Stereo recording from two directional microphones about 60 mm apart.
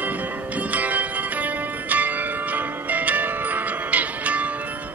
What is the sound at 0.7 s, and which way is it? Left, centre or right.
Music, right.